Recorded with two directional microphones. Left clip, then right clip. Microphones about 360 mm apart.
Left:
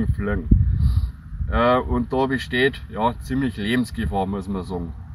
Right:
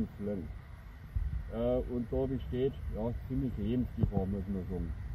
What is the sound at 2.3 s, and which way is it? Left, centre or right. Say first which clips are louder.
Speech: left 14 dB; left.